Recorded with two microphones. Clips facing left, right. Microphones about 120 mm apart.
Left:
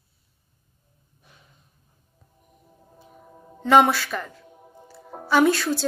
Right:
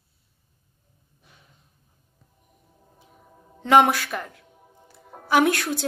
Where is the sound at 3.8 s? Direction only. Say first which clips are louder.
Even; 55° right (ahead or behind).